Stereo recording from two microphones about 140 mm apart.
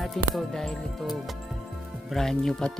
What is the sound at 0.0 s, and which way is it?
Speech, centre (ahead or behind).